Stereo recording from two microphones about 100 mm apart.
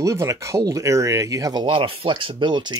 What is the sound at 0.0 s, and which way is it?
Speech, 30° right (ahead or behind).